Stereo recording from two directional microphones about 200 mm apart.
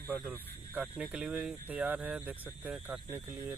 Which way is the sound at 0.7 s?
5° right (ahead or behind).